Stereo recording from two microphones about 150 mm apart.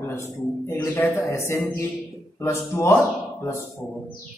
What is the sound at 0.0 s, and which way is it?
Speech, 15° left (ahead or behind).